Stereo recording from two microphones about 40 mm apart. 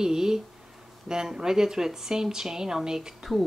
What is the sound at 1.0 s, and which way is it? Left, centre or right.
Speech, centre.